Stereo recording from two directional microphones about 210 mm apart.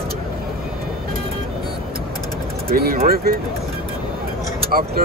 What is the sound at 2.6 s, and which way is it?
Speech, 45° right (ahead or behind).